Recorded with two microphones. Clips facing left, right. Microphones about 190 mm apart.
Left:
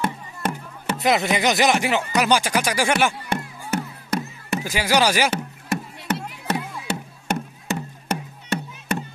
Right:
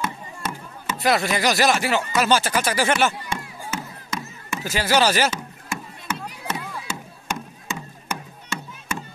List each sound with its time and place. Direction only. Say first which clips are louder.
0.0 s music: left 4 dB; 60° left (ahead or behind)
0.9 s speech: left 1 dB; 20° left (ahead or behind)
3.3 s music: left 4 dB; 65° left (ahead or behind)
4.6 s speech: right 1 dB; 15° left (ahead or behind)
5.3 s music: left 6 dB; 65° left (ahead or behind)